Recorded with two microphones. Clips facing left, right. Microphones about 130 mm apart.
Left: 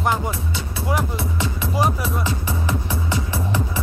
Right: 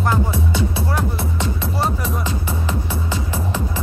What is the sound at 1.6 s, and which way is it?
Music, 10° left (ahead or behind).